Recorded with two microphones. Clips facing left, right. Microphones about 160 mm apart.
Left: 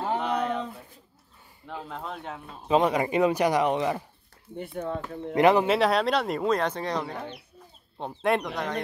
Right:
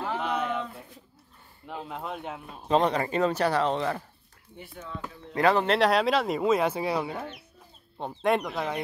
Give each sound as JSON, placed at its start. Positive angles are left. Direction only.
{"t": 0.2, "sound": "a sound", "side_deg": 0}
{"t": 1.9, "sound": "speech", "side_deg": -5}
{"t": 2.7, "sound": "speech", "side_deg": 5}
{"t": 4.6, "sound": "speech", "side_deg": 50}
{"t": 5.3, "sound": "speech", "side_deg": 20}
{"t": 5.7, "sound": "speech", "side_deg": 0}